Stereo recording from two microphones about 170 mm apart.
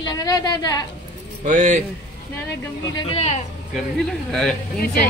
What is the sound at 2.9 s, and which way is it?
Speech, 35° left (ahead or behind).